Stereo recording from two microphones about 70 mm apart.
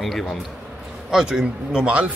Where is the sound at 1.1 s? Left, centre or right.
Centre.